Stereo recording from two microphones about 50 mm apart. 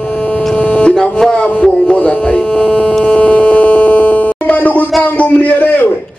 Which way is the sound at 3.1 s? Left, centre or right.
Left.